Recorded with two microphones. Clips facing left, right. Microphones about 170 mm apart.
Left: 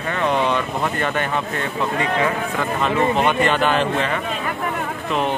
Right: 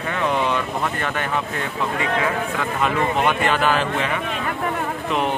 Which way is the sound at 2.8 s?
5° right (ahead or behind).